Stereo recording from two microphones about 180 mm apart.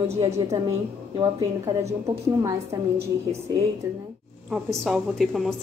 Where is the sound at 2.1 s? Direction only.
25° right (ahead or behind).